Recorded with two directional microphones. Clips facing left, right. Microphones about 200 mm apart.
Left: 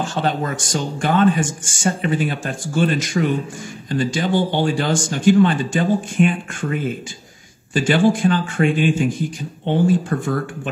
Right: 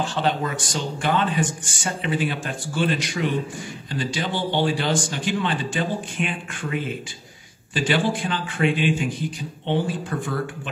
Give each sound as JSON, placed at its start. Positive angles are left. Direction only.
{"t": 0.0, "sound": "speech", "side_deg": 45}